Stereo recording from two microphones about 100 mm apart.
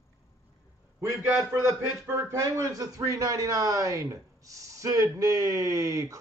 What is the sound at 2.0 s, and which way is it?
Speech, 25° right (ahead or behind).